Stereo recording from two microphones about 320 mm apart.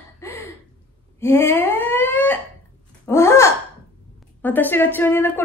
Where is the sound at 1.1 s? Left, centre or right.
Centre.